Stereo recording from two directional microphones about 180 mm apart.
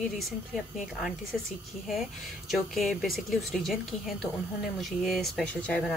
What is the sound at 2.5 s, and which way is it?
A woman's voice, centre (ahead or behind).